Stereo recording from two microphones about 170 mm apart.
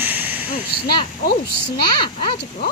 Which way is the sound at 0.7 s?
65° left (ahead or behind).